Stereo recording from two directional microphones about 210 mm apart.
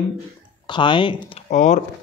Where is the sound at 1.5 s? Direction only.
35° left (ahead or behind).